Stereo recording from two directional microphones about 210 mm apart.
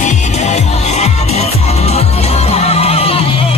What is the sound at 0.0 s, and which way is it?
Music, 35° left (ahead or behind).